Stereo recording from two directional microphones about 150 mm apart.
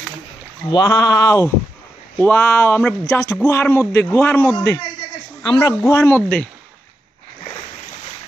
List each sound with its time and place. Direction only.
0.7 s speech: 25° left (ahead or behind); by 6.5 s 10° left (ahead or behind)